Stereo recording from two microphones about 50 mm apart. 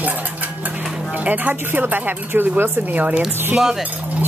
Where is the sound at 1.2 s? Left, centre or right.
Right.